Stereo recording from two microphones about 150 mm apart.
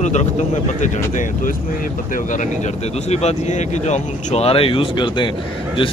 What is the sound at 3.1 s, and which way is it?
Speech, 50° left (ahead or behind).